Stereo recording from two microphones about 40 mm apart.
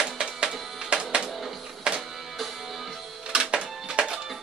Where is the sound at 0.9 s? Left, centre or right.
Right.